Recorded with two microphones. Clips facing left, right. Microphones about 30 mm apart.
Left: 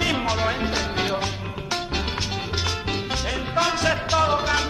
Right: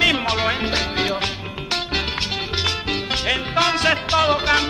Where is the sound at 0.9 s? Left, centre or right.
Right.